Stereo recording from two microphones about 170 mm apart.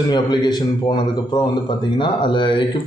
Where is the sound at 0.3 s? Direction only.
25° left (ahead or behind).